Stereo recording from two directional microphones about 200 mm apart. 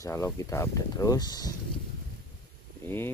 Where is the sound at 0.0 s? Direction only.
15° left (ahead or behind).